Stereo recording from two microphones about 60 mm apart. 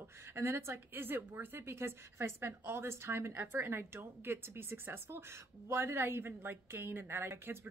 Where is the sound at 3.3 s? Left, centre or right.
Right.